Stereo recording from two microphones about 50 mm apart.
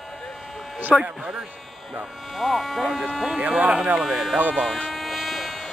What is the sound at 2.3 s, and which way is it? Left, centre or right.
Speech, centre.